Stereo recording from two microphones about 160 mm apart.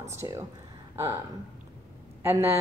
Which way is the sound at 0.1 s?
15° right (ahead or behind).